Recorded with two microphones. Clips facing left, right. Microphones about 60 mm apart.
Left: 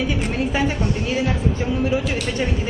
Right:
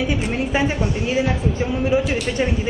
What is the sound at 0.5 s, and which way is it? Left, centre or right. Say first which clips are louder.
Speech: right 2 dB; centre.